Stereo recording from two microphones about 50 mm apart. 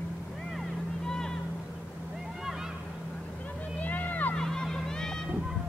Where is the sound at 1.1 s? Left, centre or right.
Centre.